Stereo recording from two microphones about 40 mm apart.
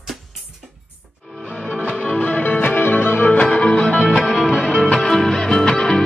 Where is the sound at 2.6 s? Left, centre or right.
Left.